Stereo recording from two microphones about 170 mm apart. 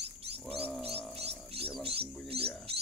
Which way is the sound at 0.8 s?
35° right (ahead or behind).